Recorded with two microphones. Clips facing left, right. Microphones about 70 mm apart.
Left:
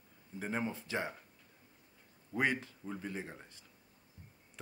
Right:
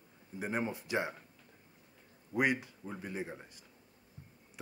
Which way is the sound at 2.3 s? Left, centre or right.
Centre.